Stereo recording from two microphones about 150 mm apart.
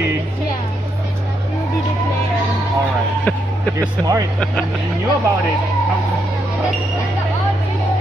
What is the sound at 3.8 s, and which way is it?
Speech, 25° right (ahead or behind).